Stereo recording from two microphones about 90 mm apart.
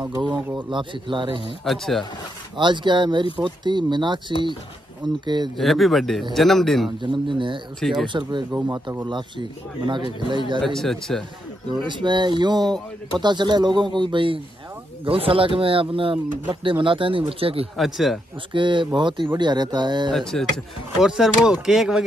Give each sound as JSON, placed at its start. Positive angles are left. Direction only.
{"t": 0.1, "sound": "speech", "side_deg": -50}
{"t": 0.7, "sound": "speech", "side_deg": -65}
{"t": 1.6, "sound": "speech", "side_deg": 5}
{"t": 2.5, "sound": "speech", "side_deg": -60}
{"t": 5.6, "sound": "speech", "side_deg": 0}
{"t": 7.0, "sound": "speech", "side_deg": -65}
{"t": 10.6, "sound": "speech", "side_deg": 5}
{"t": 11.7, "sound": "speech", "side_deg": -60}
{"t": 15.0, "sound": "speech", "side_deg": -90}
{"t": 17.3, "sound": "speech", "side_deg": -90}
{"t": 17.7, "sound": "speech", "side_deg": 0}
{"t": 18.5, "sound": "speech", "side_deg": -65}
{"t": 20.1, "sound": "speech", "side_deg": 5}
{"t": 21.0, "sound": "speech", "side_deg": -5}